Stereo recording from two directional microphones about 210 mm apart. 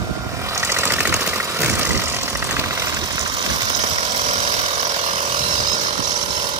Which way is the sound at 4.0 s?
30° right (ahead or behind).